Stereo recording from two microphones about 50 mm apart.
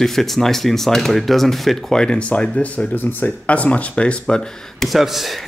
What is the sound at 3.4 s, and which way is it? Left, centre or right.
Speech, left.